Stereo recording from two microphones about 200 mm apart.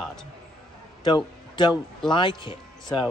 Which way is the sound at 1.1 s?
25° left (ahead or behind).